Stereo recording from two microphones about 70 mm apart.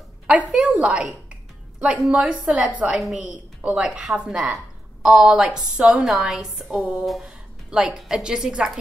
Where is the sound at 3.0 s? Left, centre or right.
Centre.